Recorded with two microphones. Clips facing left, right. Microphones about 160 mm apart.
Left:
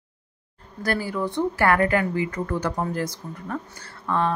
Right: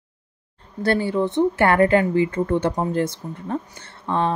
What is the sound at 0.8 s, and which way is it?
Speech, 25° right (ahead or behind).